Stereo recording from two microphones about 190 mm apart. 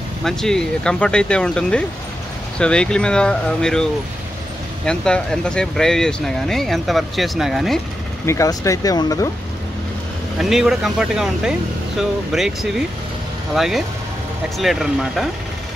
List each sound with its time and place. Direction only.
0.2 s speech: centre (ahead or behind)
4.8 s speech: 5° left (ahead or behind)
8.3 s speech: 15° left (ahead or behind)
10.3 s speech: centre (ahead or behind)